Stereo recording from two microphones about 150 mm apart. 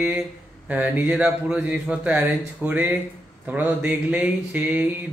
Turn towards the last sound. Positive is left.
turn(degrees=-10)  # may be behind; listen again after turning